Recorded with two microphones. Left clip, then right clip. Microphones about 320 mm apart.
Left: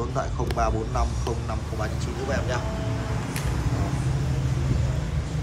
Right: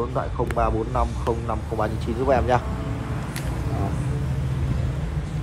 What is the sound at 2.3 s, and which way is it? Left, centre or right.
Speech, centre.